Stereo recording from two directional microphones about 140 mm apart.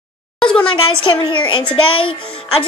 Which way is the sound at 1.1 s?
35° left (ahead or behind).